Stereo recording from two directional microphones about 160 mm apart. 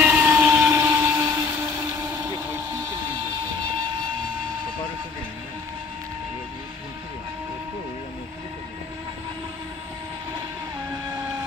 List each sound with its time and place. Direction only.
0.0 s vehicle: 10° right (ahead or behind)